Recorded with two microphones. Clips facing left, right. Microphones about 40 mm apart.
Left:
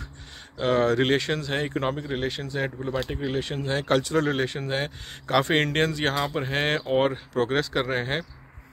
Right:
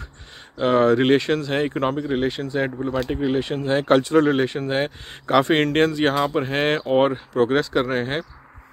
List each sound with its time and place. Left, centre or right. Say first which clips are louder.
0.6 s speech: right 5 dB; centre
5.4 s speech: right 5 dB; centre